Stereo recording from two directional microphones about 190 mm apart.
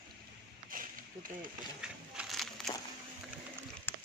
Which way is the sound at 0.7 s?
45° right (ahead or behind).